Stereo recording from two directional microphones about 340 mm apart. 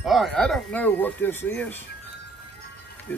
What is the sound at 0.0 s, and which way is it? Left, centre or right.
Speech, centre.